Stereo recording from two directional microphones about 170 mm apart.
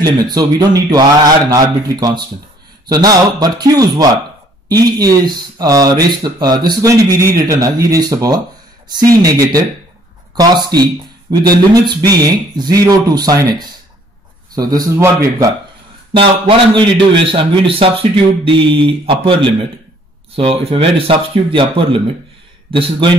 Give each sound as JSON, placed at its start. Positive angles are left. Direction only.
{"t": 0.0, "sound": "speech", "side_deg": -25}
{"t": 16.2, "sound": "speech", "side_deg": -30}